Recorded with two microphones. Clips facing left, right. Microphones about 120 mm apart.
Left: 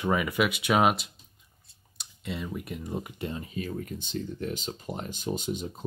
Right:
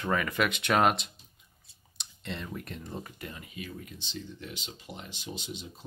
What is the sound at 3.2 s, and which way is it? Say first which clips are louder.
Speech: left 8 dB; 30° left (ahead or behind).